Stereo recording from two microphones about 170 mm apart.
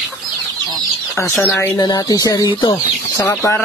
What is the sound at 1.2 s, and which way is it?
Speech, 15° left (ahead or behind).